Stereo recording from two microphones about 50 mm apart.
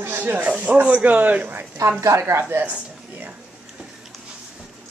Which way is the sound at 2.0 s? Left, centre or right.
Right.